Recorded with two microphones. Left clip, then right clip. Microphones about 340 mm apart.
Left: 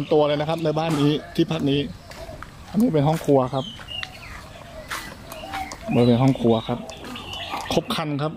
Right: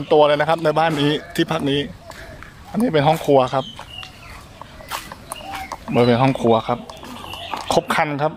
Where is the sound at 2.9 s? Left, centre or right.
Right.